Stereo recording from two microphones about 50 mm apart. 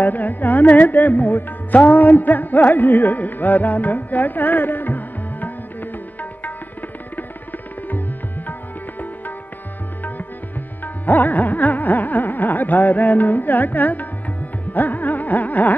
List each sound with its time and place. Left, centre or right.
0.0 s music: left
11.1 s music: left